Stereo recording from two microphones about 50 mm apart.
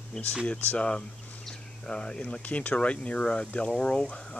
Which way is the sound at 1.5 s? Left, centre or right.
Centre.